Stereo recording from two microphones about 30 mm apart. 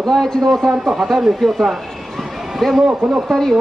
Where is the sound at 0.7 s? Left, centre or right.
Centre.